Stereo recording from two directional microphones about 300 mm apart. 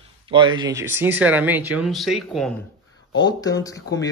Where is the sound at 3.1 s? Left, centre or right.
Centre.